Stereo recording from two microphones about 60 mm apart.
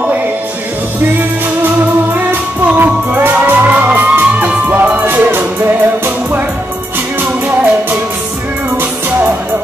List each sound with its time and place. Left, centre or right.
1.0 s music: right
2.8 s music: right